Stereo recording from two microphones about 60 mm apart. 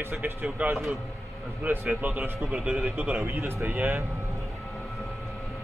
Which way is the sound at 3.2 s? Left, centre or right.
Right.